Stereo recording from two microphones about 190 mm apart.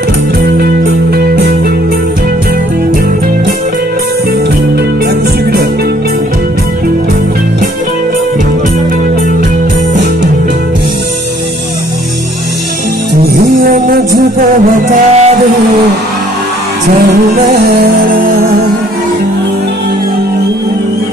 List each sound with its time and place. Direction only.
1.1 s music: 55° right (ahead or behind)
13.2 s music: 55° right (ahead or behind); by 15.3 s 40° right (ahead or behind)
17.5 s music: 50° right (ahead or behind)